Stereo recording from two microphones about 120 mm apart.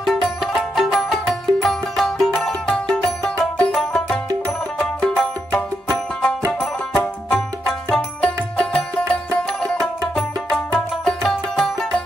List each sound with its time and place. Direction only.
0.0 s music: centre (ahead or behind)
6.6 s music: 10° left (ahead or behind)